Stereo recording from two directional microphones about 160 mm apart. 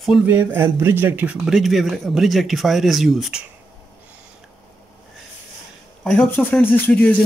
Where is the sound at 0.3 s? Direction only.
15° right (ahead or behind).